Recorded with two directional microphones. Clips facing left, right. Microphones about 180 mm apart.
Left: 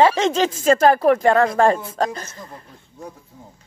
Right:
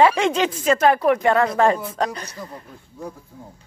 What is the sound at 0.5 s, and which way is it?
Speech, 45° left (ahead or behind).